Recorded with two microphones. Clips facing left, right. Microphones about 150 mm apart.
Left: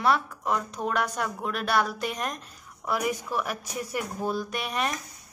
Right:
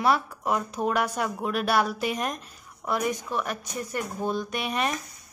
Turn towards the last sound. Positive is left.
turn(degrees=0)  # may be behind; listen again after turning